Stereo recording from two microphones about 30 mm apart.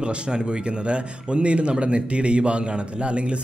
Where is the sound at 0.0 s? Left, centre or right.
Right.